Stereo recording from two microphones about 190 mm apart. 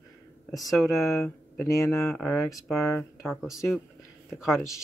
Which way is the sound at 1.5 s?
15° left (ahead or behind).